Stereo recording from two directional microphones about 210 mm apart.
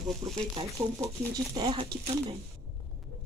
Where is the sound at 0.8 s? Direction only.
10° right (ahead or behind).